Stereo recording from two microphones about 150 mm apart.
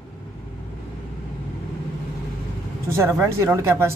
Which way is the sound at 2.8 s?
15° right (ahead or behind).